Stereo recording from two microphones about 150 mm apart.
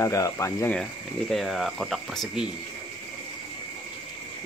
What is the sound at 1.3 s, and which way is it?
Speech, centre (ahead or behind).